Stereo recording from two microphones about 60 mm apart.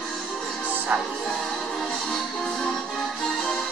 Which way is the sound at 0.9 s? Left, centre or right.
Right.